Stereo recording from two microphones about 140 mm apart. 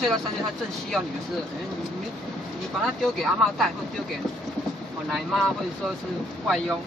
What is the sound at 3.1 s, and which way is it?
Speech, centre (ahead or behind).